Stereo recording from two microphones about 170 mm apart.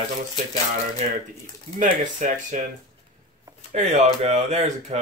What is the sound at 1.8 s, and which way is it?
Speech, 50° right (ahead or behind).